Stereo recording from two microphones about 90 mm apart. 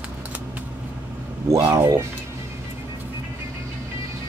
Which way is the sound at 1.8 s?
40° right (ahead or behind).